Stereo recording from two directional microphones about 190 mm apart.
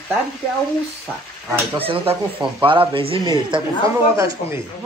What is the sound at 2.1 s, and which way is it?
Speech, 10° right (ahead or behind).